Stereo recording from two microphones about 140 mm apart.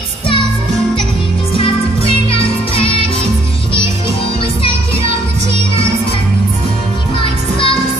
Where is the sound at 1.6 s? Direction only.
40° left (ahead or behind).